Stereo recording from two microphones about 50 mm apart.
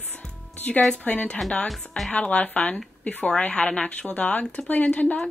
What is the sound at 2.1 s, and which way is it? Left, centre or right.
Speech, left.